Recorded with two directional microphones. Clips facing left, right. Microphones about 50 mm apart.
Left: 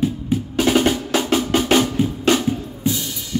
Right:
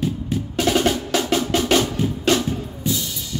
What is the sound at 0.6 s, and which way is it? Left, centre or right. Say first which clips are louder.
Percussion: left 2 dB; centre.